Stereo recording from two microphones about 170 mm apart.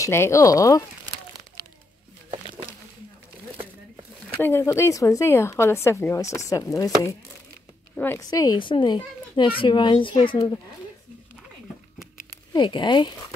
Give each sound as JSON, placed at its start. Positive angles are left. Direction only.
{"t": 0.0, "sound": "a child's voice", "side_deg": 15}
{"t": 4.4, "sound": "a woman's voice", "side_deg": 15}
{"t": 12.5, "sound": "a child's voice", "side_deg": 25}